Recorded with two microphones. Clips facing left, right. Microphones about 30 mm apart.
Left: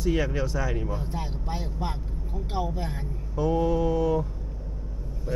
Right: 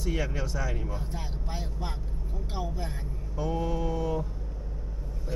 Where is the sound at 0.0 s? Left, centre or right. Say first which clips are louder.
Left 6 dB; centre.